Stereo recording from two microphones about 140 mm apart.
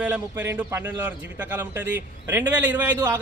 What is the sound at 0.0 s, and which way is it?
A man's voice, 10° right (ahead or behind).